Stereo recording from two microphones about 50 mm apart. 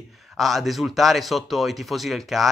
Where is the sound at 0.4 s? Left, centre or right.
Centre.